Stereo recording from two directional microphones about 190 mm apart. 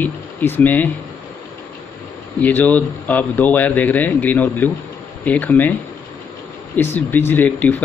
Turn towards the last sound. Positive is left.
turn(degrees=10)  # may be behind; listen again after turning